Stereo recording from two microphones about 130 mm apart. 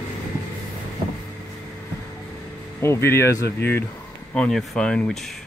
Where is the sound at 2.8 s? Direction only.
20° left (ahead or behind).